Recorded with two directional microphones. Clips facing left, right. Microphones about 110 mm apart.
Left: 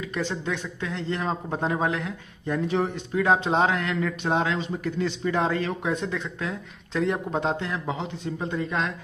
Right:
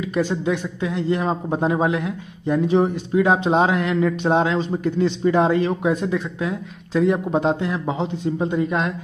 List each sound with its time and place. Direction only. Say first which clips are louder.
0.1 s a man's voice: right 8 dB; 10° right (ahead or behind)
4.0 s a man's voice: right 8 dB; 25° right (ahead or behind); by 7.7 s 5° right (ahead or behind)
7.7 s speech: right 6 dB; 25° right (ahead or behind)